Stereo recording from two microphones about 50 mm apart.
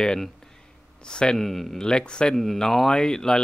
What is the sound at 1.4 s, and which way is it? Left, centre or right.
Speech, centre.